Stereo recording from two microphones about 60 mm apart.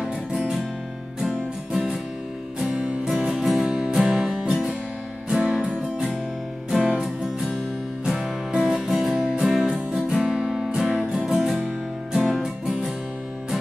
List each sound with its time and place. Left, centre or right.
1.2 s music: centre
2.6 s music: centre
3.2 s music: centre